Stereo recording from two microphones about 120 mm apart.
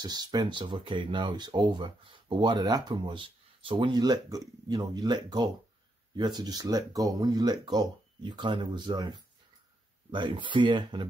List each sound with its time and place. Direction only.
0.0 s speech: 35° right (ahead or behind)